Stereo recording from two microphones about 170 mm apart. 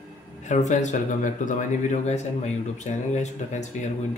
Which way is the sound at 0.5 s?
45° left (ahead or behind).